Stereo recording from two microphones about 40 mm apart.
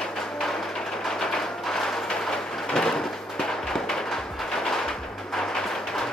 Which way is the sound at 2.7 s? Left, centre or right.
Centre.